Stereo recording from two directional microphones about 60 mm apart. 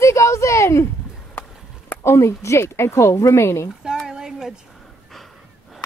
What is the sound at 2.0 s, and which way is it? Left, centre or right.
A woman's voice, left.